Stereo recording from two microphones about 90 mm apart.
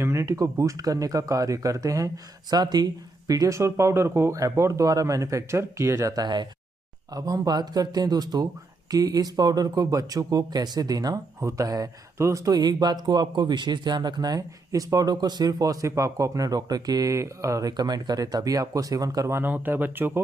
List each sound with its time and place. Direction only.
0.0 s speech: 30° right (ahead or behind)
12.5 s speech: 50° right (ahead or behind)
19.3 s speech: 20° right (ahead or behind)